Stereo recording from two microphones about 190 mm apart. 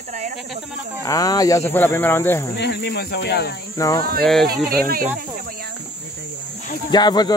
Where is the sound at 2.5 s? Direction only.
65° left (ahead or behind).